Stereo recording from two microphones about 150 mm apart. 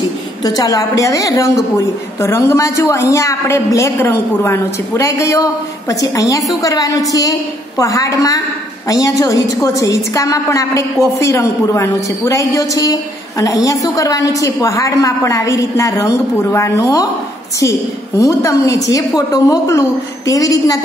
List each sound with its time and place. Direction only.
0.4 s a woman's voice: 25° left (ahead or behind)